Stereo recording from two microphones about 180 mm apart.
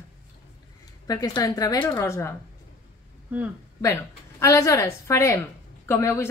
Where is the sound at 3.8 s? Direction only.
15° left (ahead or behind).